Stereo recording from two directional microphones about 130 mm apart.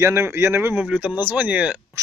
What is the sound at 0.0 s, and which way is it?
Speech, 20° right (ahead or behind).